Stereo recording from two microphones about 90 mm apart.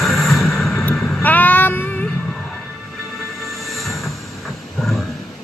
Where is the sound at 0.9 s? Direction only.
20° left (ahead or behind).